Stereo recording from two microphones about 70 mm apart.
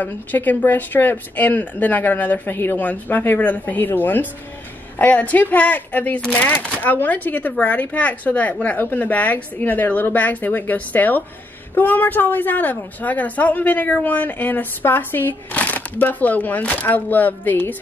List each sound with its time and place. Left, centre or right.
0.0 s a woman's voice: left